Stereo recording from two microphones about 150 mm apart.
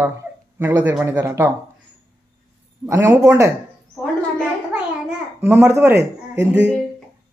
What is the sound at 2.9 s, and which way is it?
Speech, 20° right (ahead or behind).